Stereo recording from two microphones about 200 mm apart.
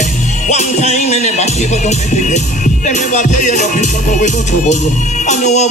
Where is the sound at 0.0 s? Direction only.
35° left (ahead or behind).